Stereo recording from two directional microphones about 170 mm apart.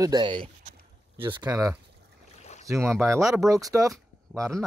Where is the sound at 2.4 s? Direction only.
40° left (ahead or behind).